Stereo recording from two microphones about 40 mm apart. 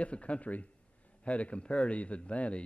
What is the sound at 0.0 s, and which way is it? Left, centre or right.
Speech, left.